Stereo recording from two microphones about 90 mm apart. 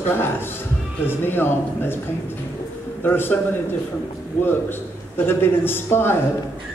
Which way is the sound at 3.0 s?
25° left (ahead or behind).